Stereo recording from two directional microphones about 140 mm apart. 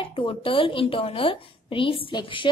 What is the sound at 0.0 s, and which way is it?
A woman's voice, 35° left (ahead or behind).